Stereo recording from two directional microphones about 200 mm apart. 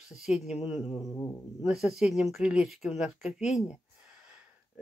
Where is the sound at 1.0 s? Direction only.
15° left (ahead or behind).